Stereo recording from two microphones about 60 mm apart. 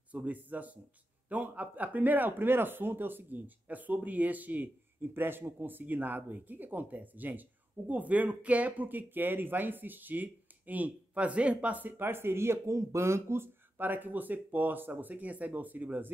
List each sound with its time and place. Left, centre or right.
0.1 s speech: right
13.7 s speech: right